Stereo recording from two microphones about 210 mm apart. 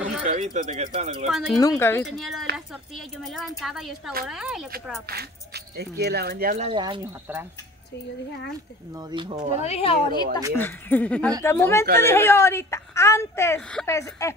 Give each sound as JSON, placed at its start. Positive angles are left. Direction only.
{"t": 0.2, "sound": "speech", "side_deg": -35}
{"t": 1.3, "sound": "speech", "side_deg": 0}
{"t": 1.6, "sound": "a woman's voice", "side_deg": 15}
{"t": 2.0, "sound": "speech", "side_deg": 0}
{"t": 5.0, "sound": "speech", "side_deg": -50}
{"t": 6.7, "sound": "speech", "side_deg": -20}
{"t": 8.9, "sound": "speech", "side_deg": -20}
{"t": 9.7, "sound": "speech", "side_deg": 25}
{"t": 10.5, "sound": "a woman's voice", "side_deg": 10}